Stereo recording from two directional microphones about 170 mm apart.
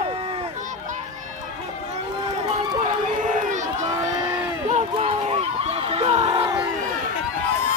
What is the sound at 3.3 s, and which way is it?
Crowd, 45° right (ahead or behind).